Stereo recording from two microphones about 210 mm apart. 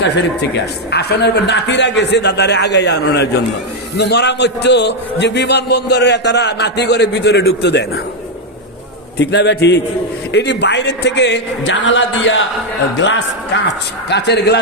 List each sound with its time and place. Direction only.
0.9 s a man's voice: 50° left (ahead or behind)
9.2 s a man's voice: 55° left (ahead or behind)